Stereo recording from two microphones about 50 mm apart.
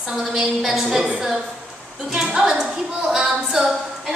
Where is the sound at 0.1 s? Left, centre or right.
Centre.